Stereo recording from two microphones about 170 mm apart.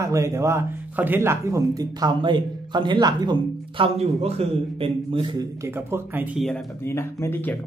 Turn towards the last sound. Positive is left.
turn(degrees=10)  # may be behind; listen again after turning